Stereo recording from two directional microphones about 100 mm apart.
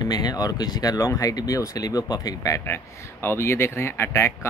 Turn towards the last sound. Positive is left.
turn(degrees=30)  # may be behind; listen again after turning